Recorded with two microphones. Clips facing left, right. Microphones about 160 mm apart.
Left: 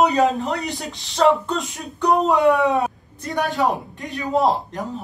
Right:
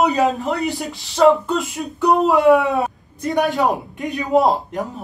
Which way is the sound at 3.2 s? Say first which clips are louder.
Right 4 dB; 15° right (ahead or behind).